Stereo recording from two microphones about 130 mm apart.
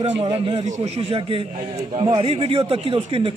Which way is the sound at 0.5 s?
55° right (ahead or behind).